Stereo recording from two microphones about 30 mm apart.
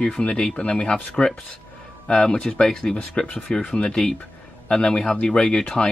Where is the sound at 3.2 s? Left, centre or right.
Left.